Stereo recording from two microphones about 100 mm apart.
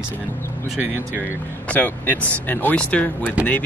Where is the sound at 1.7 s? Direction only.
20° left (ahead or behind).